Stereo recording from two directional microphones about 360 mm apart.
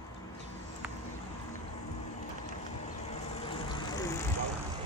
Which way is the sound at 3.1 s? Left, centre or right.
Centre.